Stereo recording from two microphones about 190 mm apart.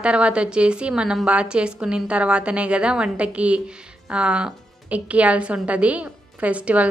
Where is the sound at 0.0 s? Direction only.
5° right (ahead or behind).